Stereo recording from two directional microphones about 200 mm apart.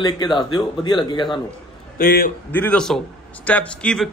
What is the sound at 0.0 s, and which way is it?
Speech, 20° left (ahead or behind).